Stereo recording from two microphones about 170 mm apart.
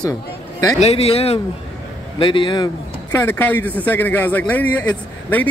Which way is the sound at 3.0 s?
10° left (ahead or behind).